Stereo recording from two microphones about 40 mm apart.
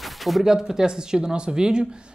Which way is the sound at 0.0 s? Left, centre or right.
Centre.